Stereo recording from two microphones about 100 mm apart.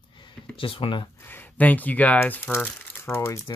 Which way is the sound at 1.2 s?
20° left (ahead or behind).